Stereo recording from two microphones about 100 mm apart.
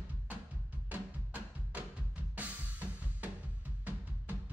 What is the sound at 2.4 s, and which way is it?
Drum kit, 15° right (ahead or behind).